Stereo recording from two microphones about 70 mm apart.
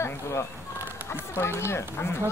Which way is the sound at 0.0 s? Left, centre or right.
Left.